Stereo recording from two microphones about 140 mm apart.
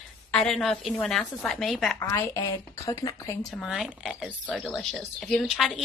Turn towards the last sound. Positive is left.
turn(degrees=0)  # may be behind; listen again after turning